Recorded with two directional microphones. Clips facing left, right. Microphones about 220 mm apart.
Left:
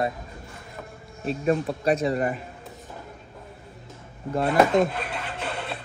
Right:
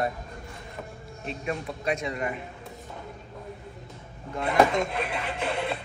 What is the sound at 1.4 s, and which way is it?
Speech, 35° left (ahead or behind).